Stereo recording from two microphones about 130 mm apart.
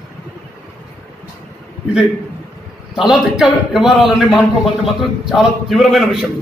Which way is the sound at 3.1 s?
Centre (ahead or behind).